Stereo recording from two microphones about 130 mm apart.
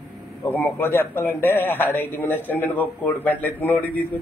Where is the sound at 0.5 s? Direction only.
20° left (ahead or behind).